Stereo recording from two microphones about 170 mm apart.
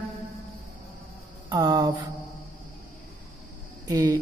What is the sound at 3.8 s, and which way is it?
Speech, 25° right (ahead or behind).